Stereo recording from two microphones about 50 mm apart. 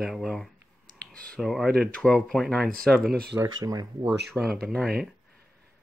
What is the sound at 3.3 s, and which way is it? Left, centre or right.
Speech, right.